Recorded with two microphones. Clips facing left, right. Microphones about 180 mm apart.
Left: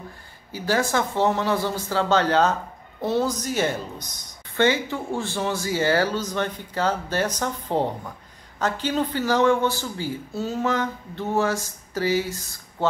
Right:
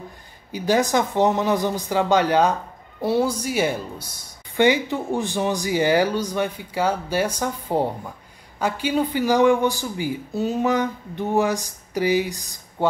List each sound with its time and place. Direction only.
0.5 s a man's voice: 15° right (ahead or behind)